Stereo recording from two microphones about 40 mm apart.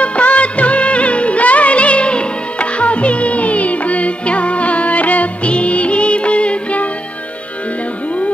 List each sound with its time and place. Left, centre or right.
0.0 s music of bollywood: left